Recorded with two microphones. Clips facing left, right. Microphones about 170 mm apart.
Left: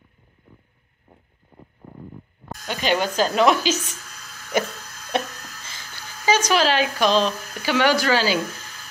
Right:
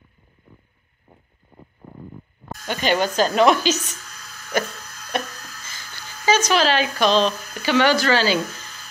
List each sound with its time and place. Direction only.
2.6 s speech: centre (ahead or behind)
5.1 s a sound: 25° left (ahead or behind)
6.2 s speech: 10° left (ahead or behind)